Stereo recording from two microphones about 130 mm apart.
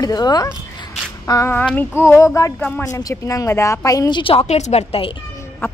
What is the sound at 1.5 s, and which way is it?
Child singing, 15° left (ahead or behind).